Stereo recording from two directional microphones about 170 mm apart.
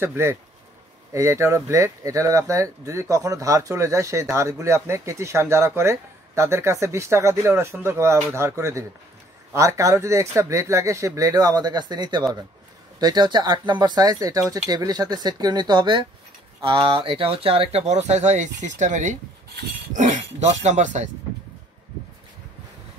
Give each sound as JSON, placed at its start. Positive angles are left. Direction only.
{"t": 0.0, "sound": "speech", "side_deg": -15}